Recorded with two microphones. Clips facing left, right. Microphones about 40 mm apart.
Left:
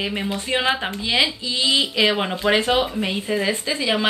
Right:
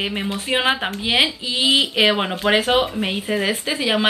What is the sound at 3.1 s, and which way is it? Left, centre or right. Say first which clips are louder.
Speech: even; centre.